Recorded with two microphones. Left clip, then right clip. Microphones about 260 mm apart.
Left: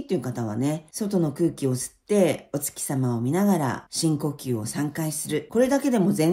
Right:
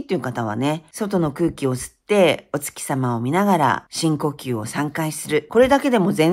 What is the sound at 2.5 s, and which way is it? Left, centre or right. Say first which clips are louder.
Speech: right 6 dB; centre.